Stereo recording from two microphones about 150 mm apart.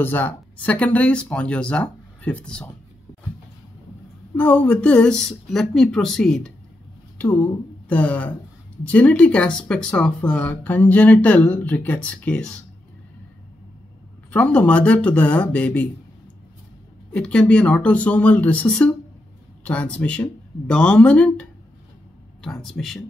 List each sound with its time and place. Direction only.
0.0 s speech: 10° left (ahead or behind)
4.4 s speech: 10° left (ahead or behind)
7.9 s speech: 10° left (ahead or behind)
14.3 s speech: 10° left (ahead or behind)
17.1 s speech: 5° left (ahead or behind)